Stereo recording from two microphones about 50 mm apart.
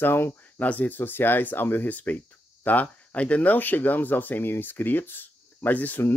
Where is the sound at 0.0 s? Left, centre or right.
Left.